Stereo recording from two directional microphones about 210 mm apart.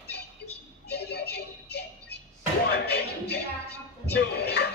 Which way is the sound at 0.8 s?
50° left (ahead or behind).